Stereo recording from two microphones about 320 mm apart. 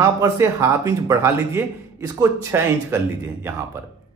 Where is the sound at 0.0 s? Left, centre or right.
Centre.